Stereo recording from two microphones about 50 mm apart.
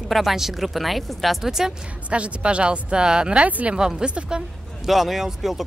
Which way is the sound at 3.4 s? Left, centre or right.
Right.